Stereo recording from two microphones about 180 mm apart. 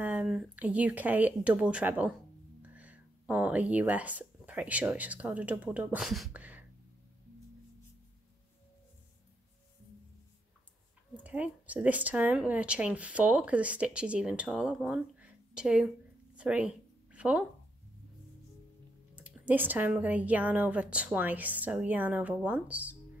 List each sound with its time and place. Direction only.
0.0 s speech: 5° right (ahead or behind)
11.1 s speech: 10° right (ahead or behind)
16.3 s a sound: 5° right (ahead or behind)
19.1 s speech: 10° right (ahead or behind)